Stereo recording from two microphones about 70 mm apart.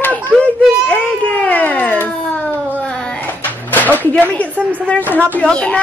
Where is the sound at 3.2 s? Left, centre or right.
Left.